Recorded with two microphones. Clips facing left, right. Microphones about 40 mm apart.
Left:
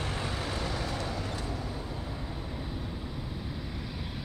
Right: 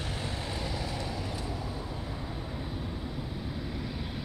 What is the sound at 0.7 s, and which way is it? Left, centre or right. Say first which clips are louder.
Vehicle: left 1 dB; centre.